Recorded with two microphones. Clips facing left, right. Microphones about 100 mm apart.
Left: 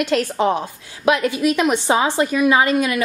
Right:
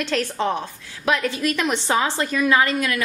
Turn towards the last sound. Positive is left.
turn(degrees=20)  # may be behind; listen again after turning